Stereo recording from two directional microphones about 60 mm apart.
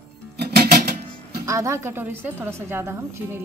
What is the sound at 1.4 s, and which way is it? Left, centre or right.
A woman's voice, right.